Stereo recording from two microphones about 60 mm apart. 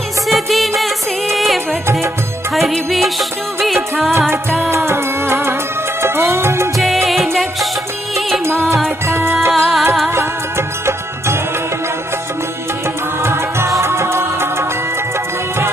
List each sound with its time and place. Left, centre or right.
0.3 s music: centre
4.3 s music: right
7.1 s music: centre
9.0 s music: right
9.5 s music: centre
13.2 s music: right